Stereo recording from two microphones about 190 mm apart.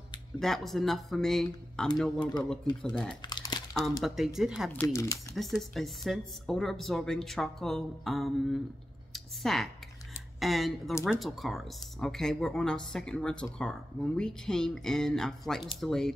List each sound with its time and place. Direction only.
0.4 s speech: centre (ahead or behind)
3.3 s crumpling: 20° left (ahead or behind)
4.0 s speech: centre (ahead or behind)
4.8 s speech: 15° left (ahead or behind)
5.3 s speech: centre (ahead or behind)
9.1 s a sound: centre (ahead or behind)
10.4 s speech: centre (ahead or behind)